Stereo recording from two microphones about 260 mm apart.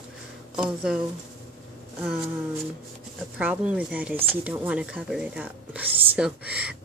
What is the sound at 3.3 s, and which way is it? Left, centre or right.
Speech, centre.